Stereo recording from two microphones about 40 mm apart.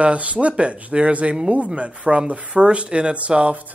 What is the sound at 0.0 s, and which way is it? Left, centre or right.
Speech, right.